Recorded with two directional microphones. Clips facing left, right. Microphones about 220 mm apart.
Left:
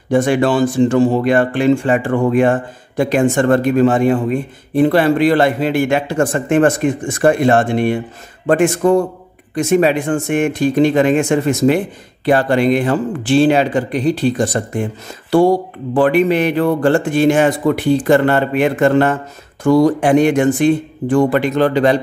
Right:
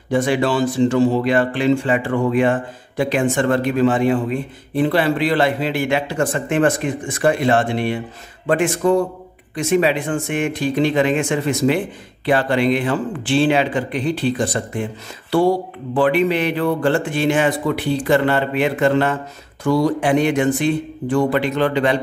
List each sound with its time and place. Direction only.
0.1 s speech: 45° left (ahead or behind)